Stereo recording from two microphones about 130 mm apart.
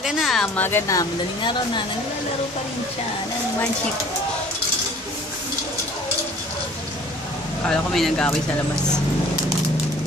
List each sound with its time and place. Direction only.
0.0 s a woman's voice: centre (ahead or behind)
0.6 s speech: 20° left (ahead or behind)
7.6 s speech: 5° left (ahead or behind)